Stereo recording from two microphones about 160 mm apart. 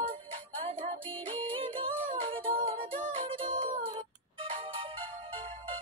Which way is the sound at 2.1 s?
35° right (ahead or behind).